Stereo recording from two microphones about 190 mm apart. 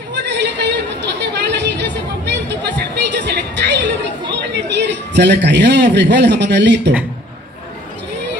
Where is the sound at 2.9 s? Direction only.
65° right (ahead or behind).